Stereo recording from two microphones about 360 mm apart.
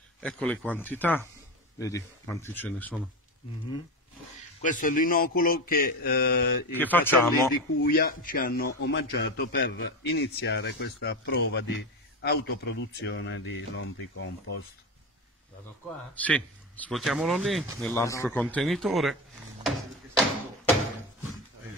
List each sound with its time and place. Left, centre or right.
0.2 s speech: centre
4.6 s a man's voice: left
6.7 s speech: centre
7.8 s a man's voice: left
16.2 s speech: centre
19.6 s a sound: centre